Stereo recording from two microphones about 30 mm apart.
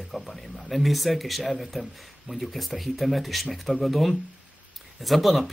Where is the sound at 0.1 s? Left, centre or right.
Centre.